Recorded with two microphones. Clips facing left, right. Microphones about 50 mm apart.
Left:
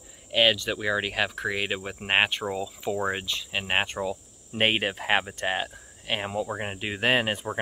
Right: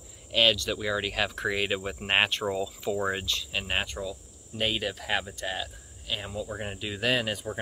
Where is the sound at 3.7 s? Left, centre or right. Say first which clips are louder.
Left 6 dB; left.